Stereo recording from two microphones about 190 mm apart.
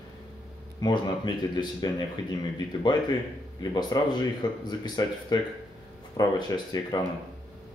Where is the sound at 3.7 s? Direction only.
20° left (ahead or behind).